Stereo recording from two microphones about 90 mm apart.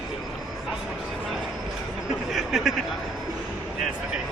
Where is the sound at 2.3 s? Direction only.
5° right (ahead or behind).